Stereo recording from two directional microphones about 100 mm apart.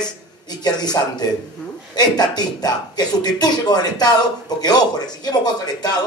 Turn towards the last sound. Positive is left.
turn(degrees=40)  # may be behind; listen again after turning